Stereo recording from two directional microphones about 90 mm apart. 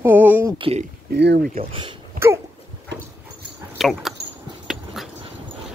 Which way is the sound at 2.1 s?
30° right (ahead or behind).